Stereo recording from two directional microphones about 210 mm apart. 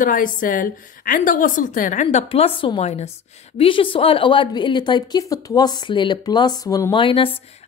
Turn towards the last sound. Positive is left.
turn(degrees=25)  # may be behind; listen again after turning